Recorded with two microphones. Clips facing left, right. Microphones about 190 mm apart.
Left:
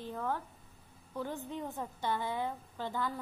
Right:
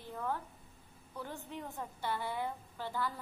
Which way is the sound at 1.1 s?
15° left (ahead or behind).